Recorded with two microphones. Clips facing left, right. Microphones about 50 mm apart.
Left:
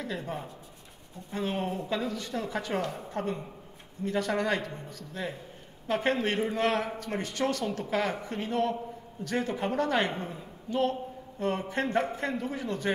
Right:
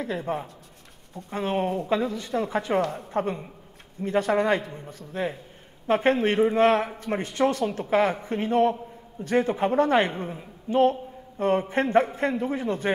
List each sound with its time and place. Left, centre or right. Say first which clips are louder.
0.0 s a woman's voice: right 6 dB; right